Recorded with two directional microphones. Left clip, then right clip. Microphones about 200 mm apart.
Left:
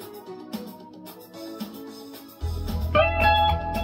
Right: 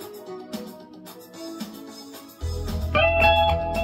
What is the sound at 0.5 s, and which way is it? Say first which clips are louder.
Music: right 1 dB; 20° left (ahead or behind).